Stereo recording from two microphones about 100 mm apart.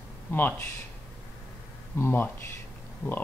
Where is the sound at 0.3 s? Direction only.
20° left (ahead or behind).